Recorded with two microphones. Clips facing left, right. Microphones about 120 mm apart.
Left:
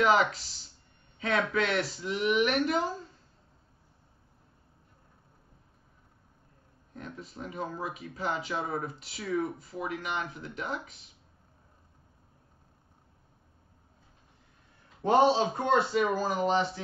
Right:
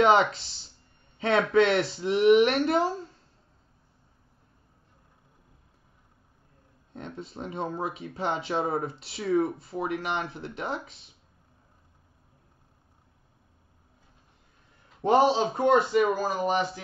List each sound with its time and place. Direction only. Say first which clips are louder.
0.0 s speech: right 4 dB; 25° right (ahead or behind)
1.5 s speech: right 7 dB; 30° right (ahead or behind)
6.9 s speech: right 4 dB; 30° right (ahead or behind)
15.0 s speech: right 2 dB; 20° right (ahead or behind)